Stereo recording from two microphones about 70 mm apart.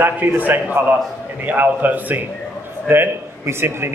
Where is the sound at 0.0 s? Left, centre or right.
Right.